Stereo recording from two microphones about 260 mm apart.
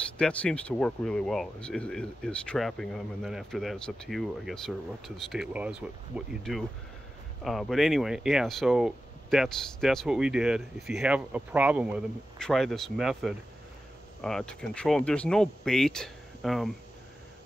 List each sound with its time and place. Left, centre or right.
0.2 s speech: centre